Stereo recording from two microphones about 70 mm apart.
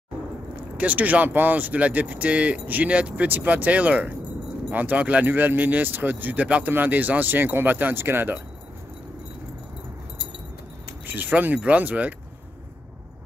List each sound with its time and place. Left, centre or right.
0.7 s speech: right
11.1 s speech: right